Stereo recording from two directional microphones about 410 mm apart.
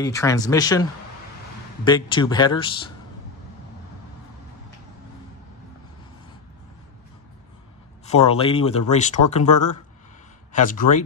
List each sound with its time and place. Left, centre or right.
0.0 s speech: centre
1.9 s speech: centre
8.0 s speech: centre
10.7 s speech: centre